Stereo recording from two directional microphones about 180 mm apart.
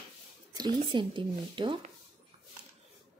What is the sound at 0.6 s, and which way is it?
Speech, 25° right (ahead or behind).